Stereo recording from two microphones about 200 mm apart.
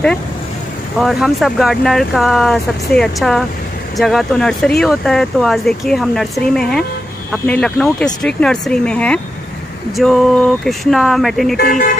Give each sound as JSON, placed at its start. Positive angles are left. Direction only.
{"t": 0.9, "sound": "speech", "side_deg": 0}
{"t": 11.5, "sound": "speech", "side_deg": 45}